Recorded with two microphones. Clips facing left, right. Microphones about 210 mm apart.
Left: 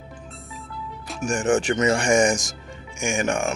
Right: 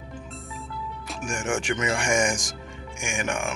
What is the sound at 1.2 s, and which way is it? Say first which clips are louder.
Speech: left 7 dB; 35° left (ahead or behind).